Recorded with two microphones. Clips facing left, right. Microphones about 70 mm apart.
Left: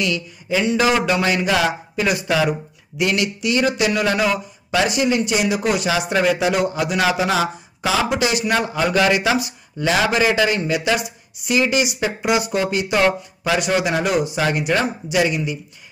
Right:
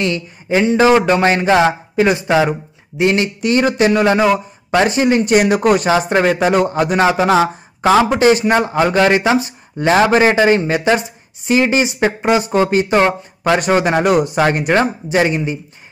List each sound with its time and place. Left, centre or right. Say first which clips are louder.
0.0 s a man's voice: right 4 dB; right